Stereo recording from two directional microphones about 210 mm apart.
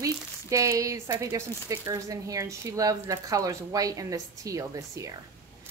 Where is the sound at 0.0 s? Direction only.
15° right (ahead or behind).